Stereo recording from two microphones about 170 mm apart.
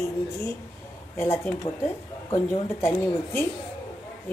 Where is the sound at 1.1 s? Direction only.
15° left (ahead or behind).